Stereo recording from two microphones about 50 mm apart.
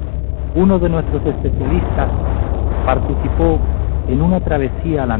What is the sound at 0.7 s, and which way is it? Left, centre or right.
Speech, right.